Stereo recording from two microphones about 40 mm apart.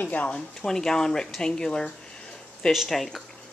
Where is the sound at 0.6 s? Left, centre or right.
Centre.